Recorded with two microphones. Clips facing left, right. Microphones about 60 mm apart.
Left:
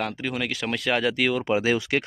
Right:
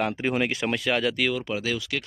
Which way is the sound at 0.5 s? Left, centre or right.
Centre.